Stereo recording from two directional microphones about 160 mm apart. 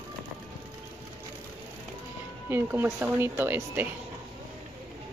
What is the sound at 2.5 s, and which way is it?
Speech, 15° right (ahead or behind).